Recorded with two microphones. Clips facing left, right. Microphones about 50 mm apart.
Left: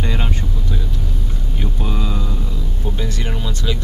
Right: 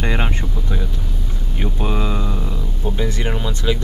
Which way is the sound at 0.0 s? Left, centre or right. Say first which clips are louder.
Right 2 dB; right.